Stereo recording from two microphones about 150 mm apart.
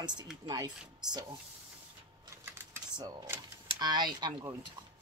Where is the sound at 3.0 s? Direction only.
25° right (ahead or behind).